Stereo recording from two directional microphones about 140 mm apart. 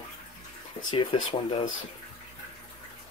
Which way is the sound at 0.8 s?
35° left (ahead or behind).